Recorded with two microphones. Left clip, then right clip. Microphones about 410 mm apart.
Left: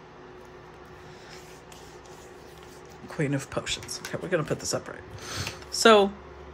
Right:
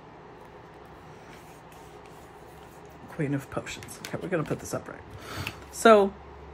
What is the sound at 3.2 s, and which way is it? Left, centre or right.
Speech, centre.